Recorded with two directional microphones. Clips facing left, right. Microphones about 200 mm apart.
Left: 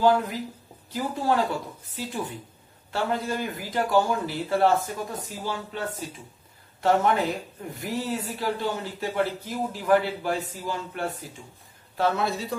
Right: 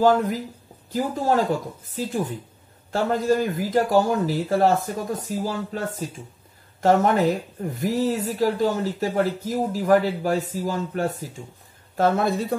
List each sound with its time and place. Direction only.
0.0 s speech: 45° right (ahead or behind)